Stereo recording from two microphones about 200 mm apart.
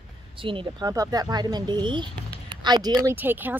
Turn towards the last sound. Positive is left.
turn(degrees=-10)  # may be behind; listen again after turning